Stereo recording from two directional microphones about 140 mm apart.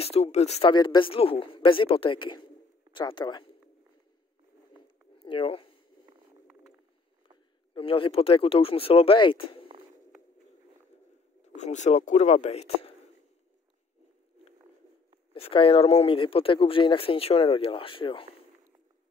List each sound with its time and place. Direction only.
0.0 s speech: 45° left (ahead or behind)
0.7 s a man's voice: 35° left (ahead or behind)
4.8 s a sound: 40° left (ahead or behind)
7.7 s speech: 40° left (ahead or behind)
11.5 s speech: 55° left (ahead or behind)
15.3 s speech: 40° left (ahead or behind)